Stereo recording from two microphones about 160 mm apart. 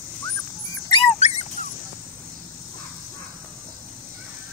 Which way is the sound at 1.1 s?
45° left (ahead or behind).